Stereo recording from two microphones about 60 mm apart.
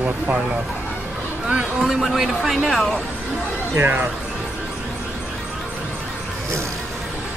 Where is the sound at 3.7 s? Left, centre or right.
Right.